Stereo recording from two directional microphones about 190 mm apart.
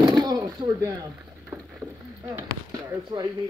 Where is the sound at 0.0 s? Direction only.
20° right (ahead or behind).